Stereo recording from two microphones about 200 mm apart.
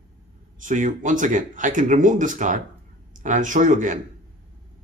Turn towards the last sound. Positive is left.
turn(degrees=-40)  # may be behind; listen again after turning